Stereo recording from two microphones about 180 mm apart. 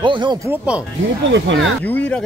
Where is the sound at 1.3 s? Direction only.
90° right.